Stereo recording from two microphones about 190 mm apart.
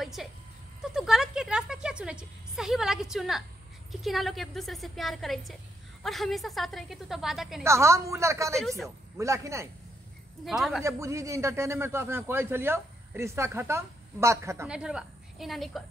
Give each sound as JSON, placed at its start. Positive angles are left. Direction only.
{"t": 0.0, "sound": "a sound", "side_deg": 0}
{"t": 0.9, "sound": "speech", "side_deg": 0}
{"t": 7.6, "sound": "a man's voice", "side_deg": -15}
{"t": 8.5, "sound": "speech", "side_deg": 0}
{"t": 9.1, "sound": "a man's voice", "side_deg": -15}
{"t": 10.4, "sound": "speech", "side_deg": 0}
{"t": 10.8, "sound": "a man's voice", "side_deg": -15}